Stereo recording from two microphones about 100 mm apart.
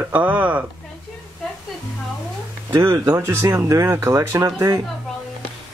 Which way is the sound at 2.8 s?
30° right (ahead or behind).